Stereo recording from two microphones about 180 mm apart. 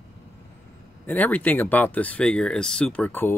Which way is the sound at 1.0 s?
10° left (ahead or behind).